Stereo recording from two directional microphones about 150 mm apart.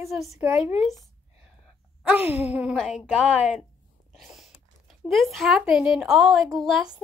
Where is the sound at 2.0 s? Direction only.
10° right (ahead or behind).